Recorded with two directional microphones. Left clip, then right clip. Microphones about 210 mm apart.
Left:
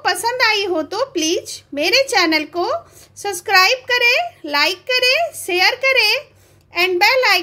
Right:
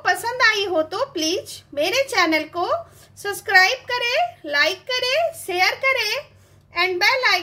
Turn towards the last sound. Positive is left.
turn(degrees=30)  # may be behind; listen again after turning